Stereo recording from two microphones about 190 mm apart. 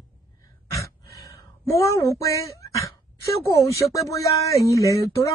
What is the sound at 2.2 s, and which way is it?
Speech, 15° left (ahead or behind).